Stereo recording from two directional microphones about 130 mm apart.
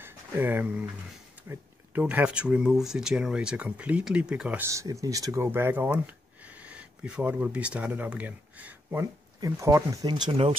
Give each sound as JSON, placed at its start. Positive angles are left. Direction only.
{"t": 0.0, "sound": "speech", "side_deg": -15}
{"t": 4.6, "sound": "speech", "side_deg": -25}
{"t": 9.4, "sound": "speech", "side_deg": -25}